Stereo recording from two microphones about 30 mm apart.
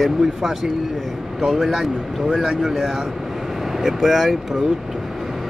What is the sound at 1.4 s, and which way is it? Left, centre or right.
A man's voice, centre.